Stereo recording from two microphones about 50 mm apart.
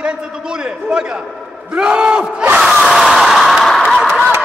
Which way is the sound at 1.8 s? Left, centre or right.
Centre.